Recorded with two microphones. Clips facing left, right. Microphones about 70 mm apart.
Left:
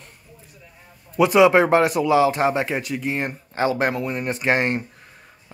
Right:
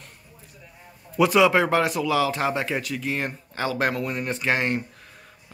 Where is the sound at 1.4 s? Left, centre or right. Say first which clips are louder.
Left 8 dB; left.